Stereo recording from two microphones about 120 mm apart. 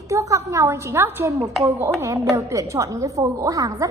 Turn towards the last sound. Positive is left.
turn(degrees=-30)  # may be behind; listen again after turning